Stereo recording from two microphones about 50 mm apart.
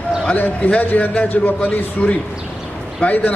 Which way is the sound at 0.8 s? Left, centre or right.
Left.